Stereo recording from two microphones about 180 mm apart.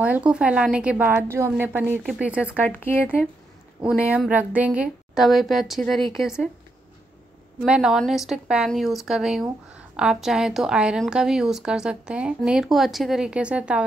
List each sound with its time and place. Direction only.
0.0 s a woman's voice: 5° right (ahead or behind)
2.6 s speech: 10° left (ahead or behind)
3.8 s a woman's voice: 5° right (ahead or behind)
7.6 s a woman's voice: 5° right (ahead or behind)